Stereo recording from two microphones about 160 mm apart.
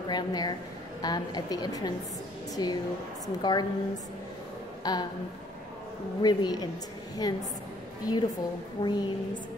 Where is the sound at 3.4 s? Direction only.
25° left (ahead or behind).